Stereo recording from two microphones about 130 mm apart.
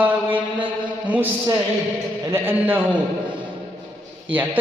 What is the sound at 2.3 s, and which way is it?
Speech, 15° right (ahead or behind).